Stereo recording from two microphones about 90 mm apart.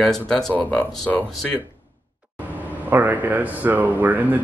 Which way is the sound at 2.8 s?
20° right (ahead or behind).